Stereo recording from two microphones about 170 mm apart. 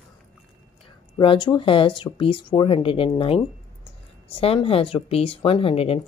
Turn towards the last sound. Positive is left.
turn(degrees=35)  # may be behind; listen again after turning